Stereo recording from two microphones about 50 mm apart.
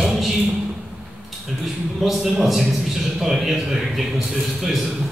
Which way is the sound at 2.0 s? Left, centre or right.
Centre.